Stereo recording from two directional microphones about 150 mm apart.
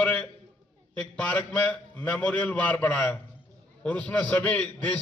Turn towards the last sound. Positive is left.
turn(degrees=10)  # may be behind; listen again after turning